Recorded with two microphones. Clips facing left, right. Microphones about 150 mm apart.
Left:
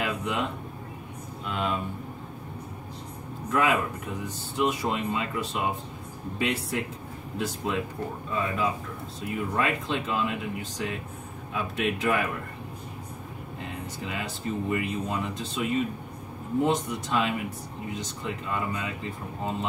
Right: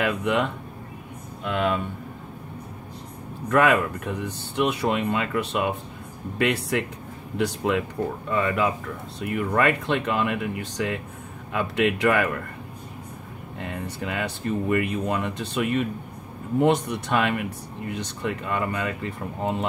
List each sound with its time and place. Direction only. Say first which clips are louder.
0.0 s speech: right 6 dB; 65° right (ahead or behind)
3.4 s speech: right 5 dB; 65° right (ahead or behind)
13.6 s speech: right 5 dB; 65° right (ahead or behind)